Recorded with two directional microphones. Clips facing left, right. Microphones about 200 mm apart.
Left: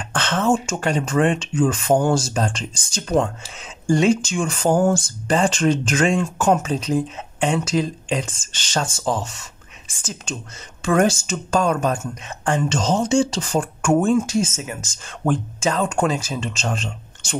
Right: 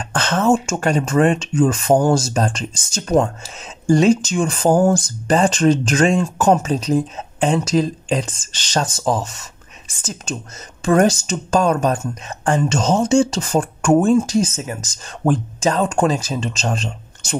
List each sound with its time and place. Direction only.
0.0 s speech: 40° right (ahead or behind)